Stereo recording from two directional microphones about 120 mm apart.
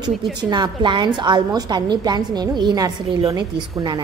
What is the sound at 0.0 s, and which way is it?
A woman's voice, 35° right (ahead or behind).